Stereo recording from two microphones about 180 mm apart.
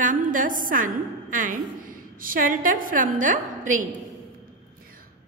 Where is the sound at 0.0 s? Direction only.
45° right (ahead or behind).